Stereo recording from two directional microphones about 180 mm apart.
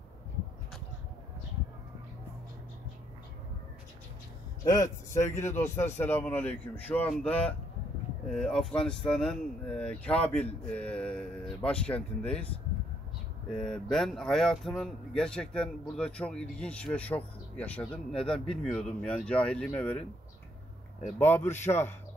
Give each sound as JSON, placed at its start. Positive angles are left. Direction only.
{"t": 4.6, "sound": "speech", "side_deg": 20}
{"t": 13.5, "sound": "speech", "side_deg": 5}
{"t": 21.2, "sound": "speech", "side_deg": 10}